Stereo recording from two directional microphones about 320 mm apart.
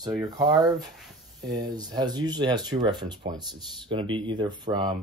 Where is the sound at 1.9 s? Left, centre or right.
Centre.